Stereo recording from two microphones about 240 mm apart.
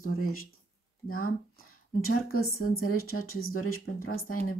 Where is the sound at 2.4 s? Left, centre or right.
Left.